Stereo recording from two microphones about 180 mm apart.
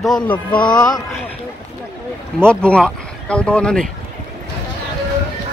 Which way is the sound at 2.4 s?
5° left (ahead or behind).